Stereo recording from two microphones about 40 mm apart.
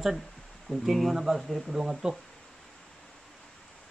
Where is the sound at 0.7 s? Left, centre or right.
Left.